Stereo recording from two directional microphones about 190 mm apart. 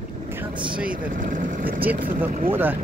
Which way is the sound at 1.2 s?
45° right (ahead or behind).